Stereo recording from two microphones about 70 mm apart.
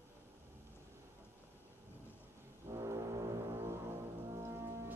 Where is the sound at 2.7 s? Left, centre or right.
Right.